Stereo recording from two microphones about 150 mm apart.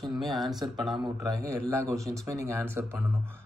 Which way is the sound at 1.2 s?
20° right (ahead or behind).